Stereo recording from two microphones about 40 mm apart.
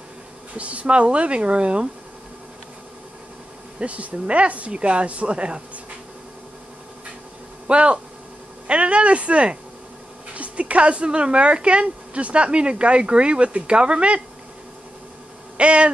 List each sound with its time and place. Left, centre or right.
0.6 s speech: right
3.8 s speech: right
7.6 s speech: right
15.5 s a sound: right